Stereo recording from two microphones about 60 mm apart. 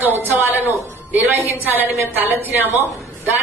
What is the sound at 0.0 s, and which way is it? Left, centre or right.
A woman's voice, right.